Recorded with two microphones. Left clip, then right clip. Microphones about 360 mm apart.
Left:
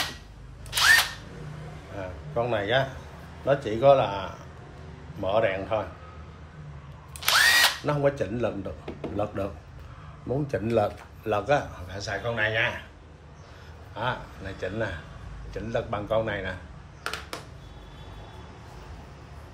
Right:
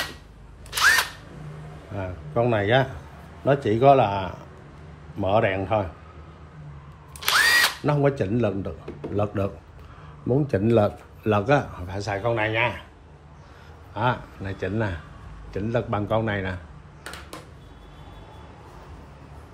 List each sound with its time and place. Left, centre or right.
2.0 s a sound: centre
3.4 s a man's voice: right
7.2 s drill: centre
7.8 s a man's voice: centre
13.9 s a man's voice: centre